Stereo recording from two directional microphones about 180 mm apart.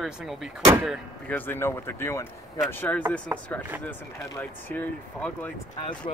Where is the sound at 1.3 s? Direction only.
10° left (ahead or behind).